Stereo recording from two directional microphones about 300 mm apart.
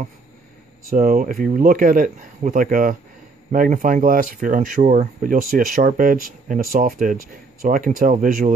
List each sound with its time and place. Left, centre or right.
0.8 s speech: right